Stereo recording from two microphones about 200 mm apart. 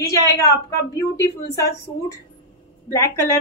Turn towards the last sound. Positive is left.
turn(degrees=15)  # may be behind; listen again after turning